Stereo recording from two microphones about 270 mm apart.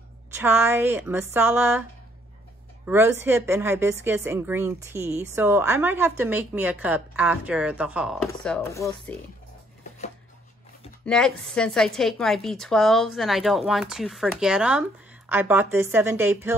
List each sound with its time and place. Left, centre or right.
0.3 s a woman's voice: centre
11.1 s a woman's voice: centre